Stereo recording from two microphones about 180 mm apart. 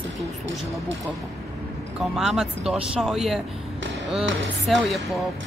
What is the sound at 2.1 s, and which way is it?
Speech, centre (ahead or behind).